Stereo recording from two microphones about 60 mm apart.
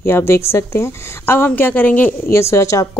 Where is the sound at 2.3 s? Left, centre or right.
Left.